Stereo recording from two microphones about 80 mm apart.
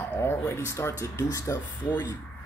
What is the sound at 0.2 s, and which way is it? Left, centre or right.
Speech, left.